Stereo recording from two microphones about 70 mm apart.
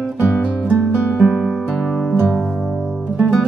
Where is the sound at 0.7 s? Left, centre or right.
Centre.